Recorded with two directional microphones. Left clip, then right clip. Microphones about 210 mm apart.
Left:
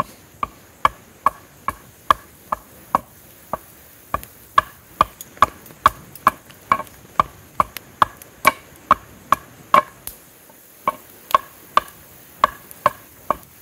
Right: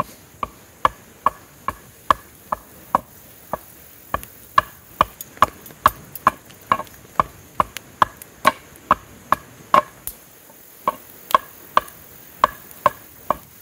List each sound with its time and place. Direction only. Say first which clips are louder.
0.0 s a sound: left 1 dB; centre (ahead or behind)
3.5 s chop: left 1 dB; centre (ahead or behind)
4.1 s insect: even; centre (ahead or behind)
5.4 s chop: left 1 dB; centre (ahead or behind)
10.9 s tick-tock: even; centre (ahead or behind)
12.4 s a sound: even; centre (ahead or behind)